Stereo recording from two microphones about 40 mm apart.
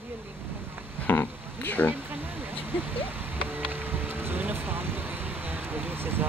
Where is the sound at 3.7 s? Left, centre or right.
Right.